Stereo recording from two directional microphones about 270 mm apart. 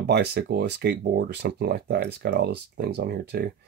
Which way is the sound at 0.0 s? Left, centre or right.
Right.